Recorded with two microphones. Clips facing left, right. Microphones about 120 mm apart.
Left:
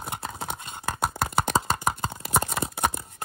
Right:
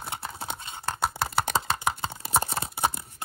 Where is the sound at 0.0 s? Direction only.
55° left (ahead or behind).